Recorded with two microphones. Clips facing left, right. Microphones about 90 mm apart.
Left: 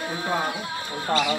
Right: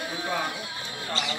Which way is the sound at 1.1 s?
50° left (ahead or behind).